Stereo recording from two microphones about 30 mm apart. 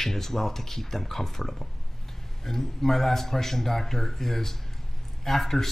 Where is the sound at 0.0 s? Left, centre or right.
Centre.